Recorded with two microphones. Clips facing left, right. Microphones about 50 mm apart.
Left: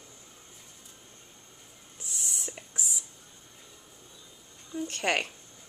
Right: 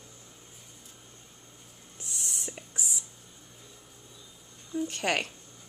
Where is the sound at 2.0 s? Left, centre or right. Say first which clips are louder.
Even; centre.